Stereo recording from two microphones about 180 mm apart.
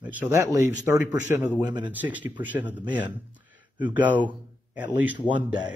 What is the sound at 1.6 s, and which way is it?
Speech, 25° right (ahead or behind).